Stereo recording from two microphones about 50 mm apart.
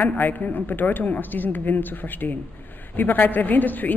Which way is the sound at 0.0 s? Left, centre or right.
Left.